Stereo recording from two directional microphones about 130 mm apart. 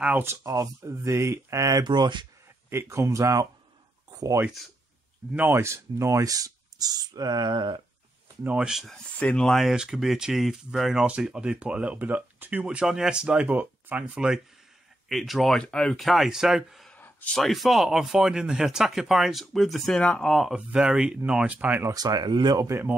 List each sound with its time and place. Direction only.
0.0 s speech: 15° right (ahead or behind); by 2.2 s 35° right (ahead or behind)
2.7 s speech: 20° right (ahead or behind)
8.5 s speech: 5° right (ahead or behind)
9.2 s speech: 5° left (ahead or behind)
16.9 s a sound: 10° left (ahead or behind)
17.4 s speech: centre (ahead or behind)
21.9 s speech: 30° right (ahead or behind)